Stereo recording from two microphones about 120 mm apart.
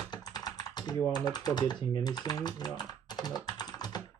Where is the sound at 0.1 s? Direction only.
35° left (ahead or behind).